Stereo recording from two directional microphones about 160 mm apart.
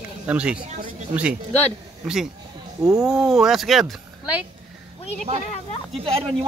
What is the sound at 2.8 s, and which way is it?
Speech, 5° right (ahead or behind).